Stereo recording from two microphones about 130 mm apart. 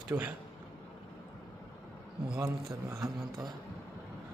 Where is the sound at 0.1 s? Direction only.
25° right (ahead or behind).